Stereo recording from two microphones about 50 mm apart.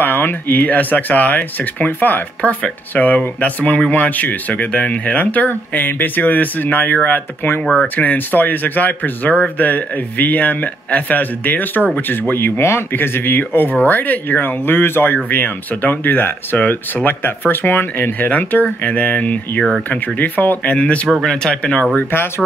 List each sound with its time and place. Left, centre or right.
0.0 s speech: left
12.9 s speech: left
20.7 s speech: left